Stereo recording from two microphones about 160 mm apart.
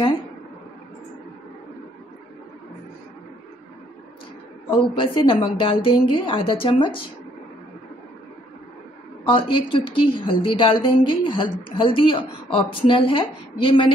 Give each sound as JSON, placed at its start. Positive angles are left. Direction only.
{"t": 4.9, "sound": "a woman's voice", "side_deg": 30}
{"t": 9.2, "sound": "a woman's voice", "side_deg": 30}